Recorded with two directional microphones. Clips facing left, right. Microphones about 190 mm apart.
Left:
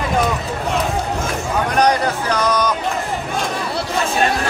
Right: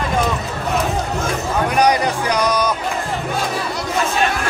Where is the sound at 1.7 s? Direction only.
10° right (ahead or behind).